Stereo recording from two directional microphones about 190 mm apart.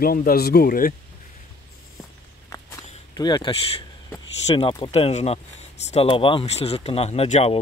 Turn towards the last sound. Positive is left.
turn(degrees=30)  # may be behind; listen again after turning